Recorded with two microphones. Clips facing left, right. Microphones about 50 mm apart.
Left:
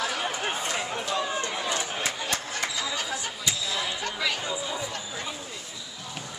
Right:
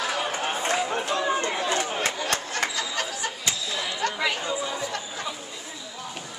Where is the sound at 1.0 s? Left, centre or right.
Right.